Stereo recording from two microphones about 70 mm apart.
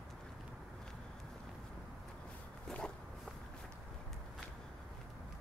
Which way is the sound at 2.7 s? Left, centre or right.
Centre.